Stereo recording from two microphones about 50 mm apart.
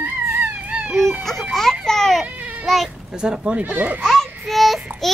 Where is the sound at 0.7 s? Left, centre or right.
Right.